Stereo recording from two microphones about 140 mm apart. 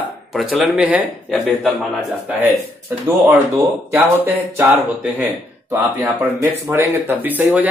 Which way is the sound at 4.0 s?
15° right (ahead or behind).